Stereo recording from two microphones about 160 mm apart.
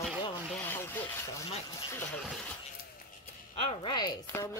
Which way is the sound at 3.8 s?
25° left (ahead or behind).